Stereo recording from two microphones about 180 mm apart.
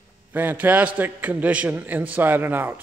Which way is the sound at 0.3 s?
10° right (ahead or behind).